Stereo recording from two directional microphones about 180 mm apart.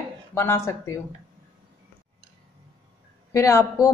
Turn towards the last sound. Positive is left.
turn(degrees=15)  # may be behind; listen again after turning